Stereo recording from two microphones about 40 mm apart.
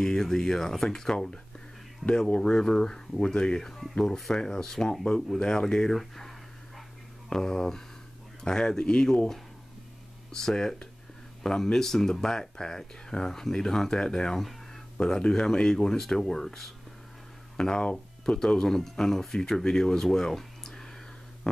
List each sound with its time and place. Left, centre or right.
0.0 s speech: centre
10.3 s speech: centre